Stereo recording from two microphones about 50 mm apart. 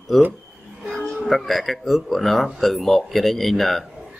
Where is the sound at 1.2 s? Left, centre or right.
Centre.